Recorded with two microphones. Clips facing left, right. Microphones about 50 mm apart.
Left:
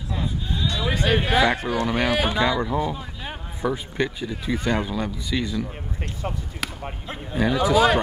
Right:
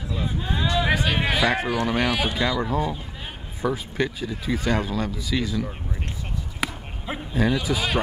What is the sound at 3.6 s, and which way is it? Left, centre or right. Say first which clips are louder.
Speech: even; centre.